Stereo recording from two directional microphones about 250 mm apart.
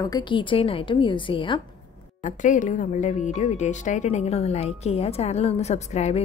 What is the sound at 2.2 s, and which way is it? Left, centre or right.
Speech, left.